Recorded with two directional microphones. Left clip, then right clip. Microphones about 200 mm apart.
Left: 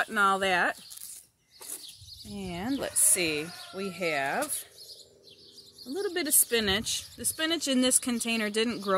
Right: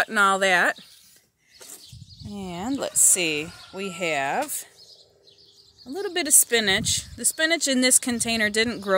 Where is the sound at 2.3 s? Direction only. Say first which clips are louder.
Right 4 dB; 30° right (ahead or behind).